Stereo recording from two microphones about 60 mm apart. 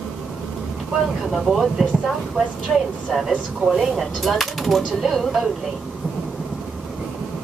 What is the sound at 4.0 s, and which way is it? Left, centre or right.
Speech, centre.